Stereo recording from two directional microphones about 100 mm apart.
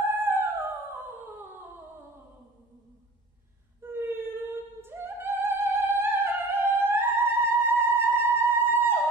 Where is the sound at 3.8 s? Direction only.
25° right (ahead or behind).